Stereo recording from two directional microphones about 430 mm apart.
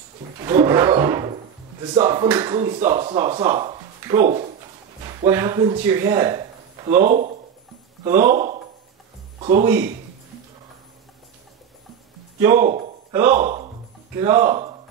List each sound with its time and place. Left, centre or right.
0.4 s a sound: centre
2.0 s speech: centre
7.1 s speech: centre
8.0 s speech: centre
9.4 s speech: centre
12.4 s speech: centre
12.6 s speech: centre
13.1 s speech: centre